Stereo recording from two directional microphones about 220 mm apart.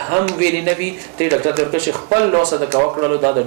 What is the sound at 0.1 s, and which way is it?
Speech, 15° right (ahead or behind).